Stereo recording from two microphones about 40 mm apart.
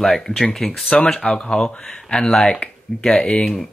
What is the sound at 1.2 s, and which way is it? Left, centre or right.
Speech, left.